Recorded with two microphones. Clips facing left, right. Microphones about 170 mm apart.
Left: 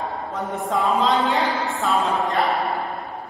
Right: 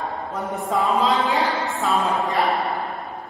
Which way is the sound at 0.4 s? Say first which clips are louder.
Even; centre (ahead or behind).